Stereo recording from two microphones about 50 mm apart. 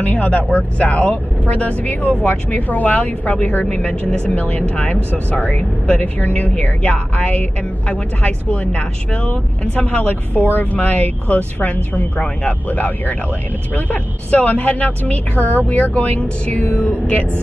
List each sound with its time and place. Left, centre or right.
0.0 s a woman's voice: left